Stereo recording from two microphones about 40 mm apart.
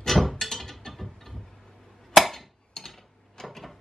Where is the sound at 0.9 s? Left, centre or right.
Centre.